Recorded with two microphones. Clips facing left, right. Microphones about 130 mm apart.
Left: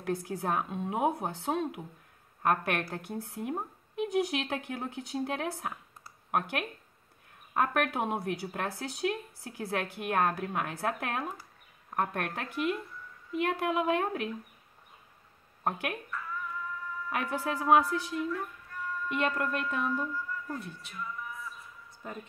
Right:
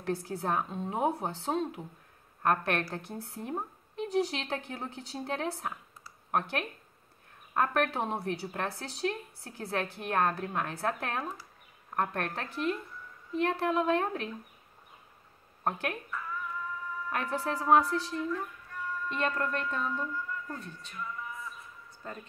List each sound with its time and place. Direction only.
0.0 s a woman's voice: 5° left (ahead or behind)
7.5 s a woman's voice: 5° left (ahead or behind)
15.6 s speech: 5° left (ahead or behind)
18.3 s a sound: centre (ahead or behind)